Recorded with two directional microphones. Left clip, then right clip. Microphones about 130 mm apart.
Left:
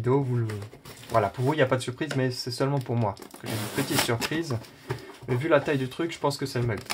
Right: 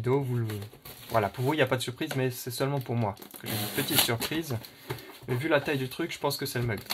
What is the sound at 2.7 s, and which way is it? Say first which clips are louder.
Speech: left 3 dB; 25° right (ahead or behind).